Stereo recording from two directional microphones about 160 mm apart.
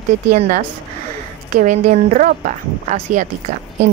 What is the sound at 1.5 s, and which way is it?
Speech, 55° right (ahead or behind).